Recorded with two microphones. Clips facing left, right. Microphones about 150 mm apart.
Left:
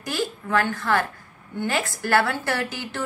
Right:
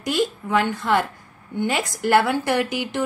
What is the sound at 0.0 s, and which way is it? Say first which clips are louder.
A woman's voice: right 5 dB; 20° right (ahead or behind).